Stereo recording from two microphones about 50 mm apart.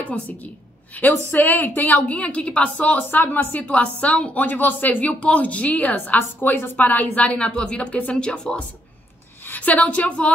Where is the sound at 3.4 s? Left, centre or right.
Left.